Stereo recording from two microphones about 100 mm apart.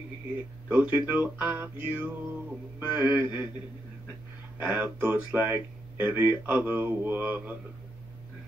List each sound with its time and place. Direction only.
0.7 s music: 20° right (ahead or behind)
4.6 s speech: 15° right (ahead or behind)